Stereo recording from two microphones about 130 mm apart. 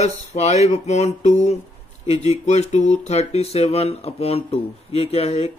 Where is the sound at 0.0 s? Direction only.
60° left (ahead or behind).